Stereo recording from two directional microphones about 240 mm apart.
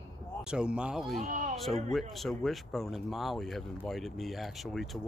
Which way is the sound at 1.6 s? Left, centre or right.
Centre.